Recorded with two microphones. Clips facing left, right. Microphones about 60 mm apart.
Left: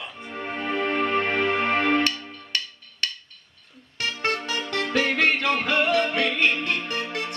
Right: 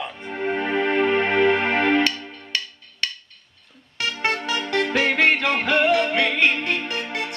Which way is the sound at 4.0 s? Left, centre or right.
Right.